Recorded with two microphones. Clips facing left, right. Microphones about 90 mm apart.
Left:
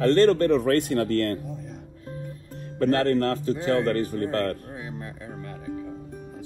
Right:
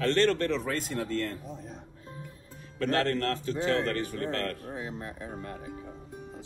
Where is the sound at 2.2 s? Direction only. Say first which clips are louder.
Left 9 dB; 50° left (ahead or behind).